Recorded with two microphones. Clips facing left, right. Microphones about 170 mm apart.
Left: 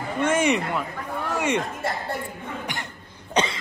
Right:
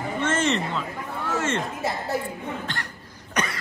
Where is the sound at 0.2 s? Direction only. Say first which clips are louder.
Left 3 dB; 10° left (ahead or behind).